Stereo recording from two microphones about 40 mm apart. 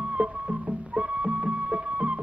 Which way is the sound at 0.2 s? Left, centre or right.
Right.